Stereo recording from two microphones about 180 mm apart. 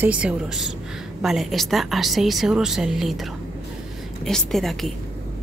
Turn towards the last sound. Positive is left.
turn(degrees=0)  # may be behind; listen again after turning